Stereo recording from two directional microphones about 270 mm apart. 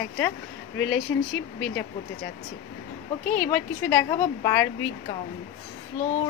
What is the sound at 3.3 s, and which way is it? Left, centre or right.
A woman's voice, centre.